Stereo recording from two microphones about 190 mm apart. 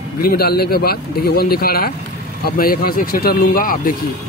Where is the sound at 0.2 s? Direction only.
55° left (ahead or behind).